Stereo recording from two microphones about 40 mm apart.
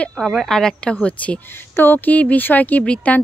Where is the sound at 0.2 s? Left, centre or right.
Centre.